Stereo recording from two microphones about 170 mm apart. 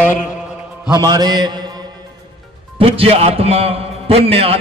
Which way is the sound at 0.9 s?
25° right (ahead or behind).